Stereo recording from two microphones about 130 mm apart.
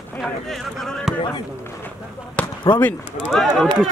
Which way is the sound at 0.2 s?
Centre (ahead or behind).